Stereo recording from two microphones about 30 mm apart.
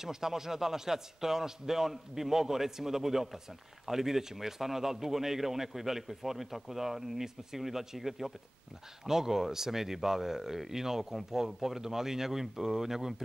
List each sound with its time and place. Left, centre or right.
0.0 s speech: centre